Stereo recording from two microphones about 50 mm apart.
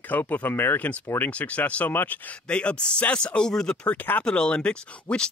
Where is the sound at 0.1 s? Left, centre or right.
Left.